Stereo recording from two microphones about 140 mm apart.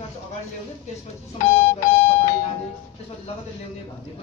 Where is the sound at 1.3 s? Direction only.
25° left (ahead or behind).